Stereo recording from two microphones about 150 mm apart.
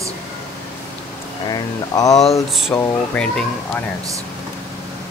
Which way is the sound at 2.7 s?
10° left (ahead or behind).